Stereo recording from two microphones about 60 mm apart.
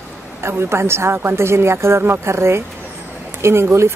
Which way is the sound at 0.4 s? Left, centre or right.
Right.